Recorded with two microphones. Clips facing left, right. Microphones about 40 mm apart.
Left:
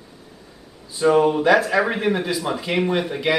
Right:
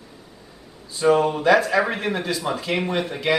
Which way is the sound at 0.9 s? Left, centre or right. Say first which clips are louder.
Left 2 dB; centre.